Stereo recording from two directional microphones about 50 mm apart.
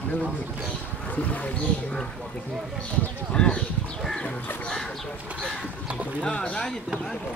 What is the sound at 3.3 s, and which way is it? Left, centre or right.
Speech, centre.